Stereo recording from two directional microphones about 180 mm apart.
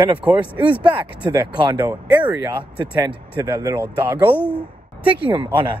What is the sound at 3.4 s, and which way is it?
Speech, 20° right (ahead or behind).